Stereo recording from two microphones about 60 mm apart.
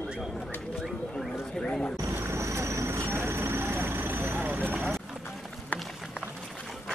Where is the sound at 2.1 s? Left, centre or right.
Right.